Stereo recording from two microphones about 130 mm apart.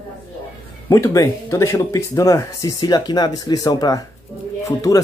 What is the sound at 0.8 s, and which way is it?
Speech, 25° left (ahead or behind).